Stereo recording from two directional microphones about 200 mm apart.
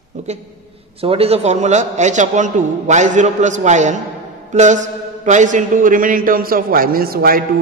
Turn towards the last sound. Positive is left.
turn(degrees=-45)  # may be behind; listen again after turning